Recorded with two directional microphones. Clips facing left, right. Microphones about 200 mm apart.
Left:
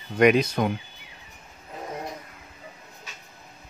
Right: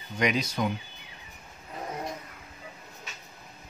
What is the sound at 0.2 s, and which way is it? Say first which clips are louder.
Speech: left 8 dB; 55° left (ahead or behind).